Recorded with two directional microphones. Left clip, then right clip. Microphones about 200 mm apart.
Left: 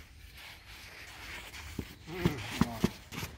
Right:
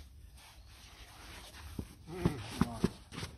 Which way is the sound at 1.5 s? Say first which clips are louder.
Left 5 dB; 15° left (ahead or behind).